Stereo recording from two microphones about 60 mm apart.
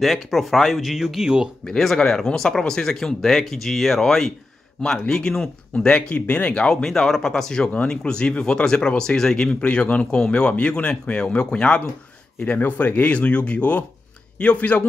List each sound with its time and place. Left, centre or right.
0.0 s speech: centre
1.7 s speech: centre
6.7 s speech: centre
12.4 s speech: left